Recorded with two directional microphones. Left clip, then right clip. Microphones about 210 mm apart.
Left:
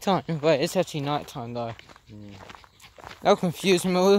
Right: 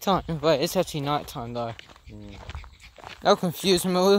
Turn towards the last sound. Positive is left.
turn(degrees=0)  # may be behind; listen again after turning